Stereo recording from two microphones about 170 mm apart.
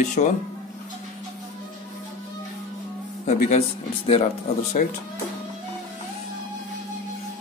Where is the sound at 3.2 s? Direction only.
40° left (ahead or behind).